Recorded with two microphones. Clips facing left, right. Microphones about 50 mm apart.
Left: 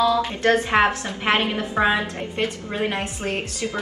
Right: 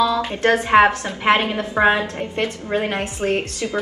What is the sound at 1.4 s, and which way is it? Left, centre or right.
Speech, right.